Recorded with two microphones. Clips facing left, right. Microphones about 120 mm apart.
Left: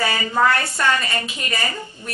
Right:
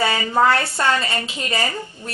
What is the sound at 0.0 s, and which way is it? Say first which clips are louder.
A woman's voice: right 2 dB; 25° right (ahead or behind).